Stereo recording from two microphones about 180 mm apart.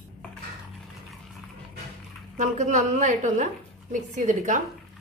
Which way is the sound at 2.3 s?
40° right (ahead or behind).